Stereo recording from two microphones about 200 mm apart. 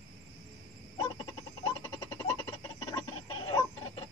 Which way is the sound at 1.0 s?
20° left (ahead or behind).